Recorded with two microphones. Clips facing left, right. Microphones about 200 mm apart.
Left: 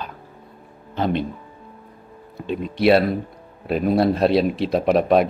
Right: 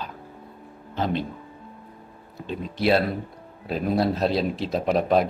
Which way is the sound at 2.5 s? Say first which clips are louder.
Left 5 dB; 65° left (ahead or behind).